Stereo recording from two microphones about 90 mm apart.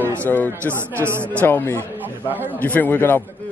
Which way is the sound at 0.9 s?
25° right (ahead or behind).